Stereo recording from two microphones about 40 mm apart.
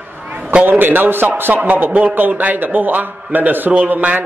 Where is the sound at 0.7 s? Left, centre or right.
Right.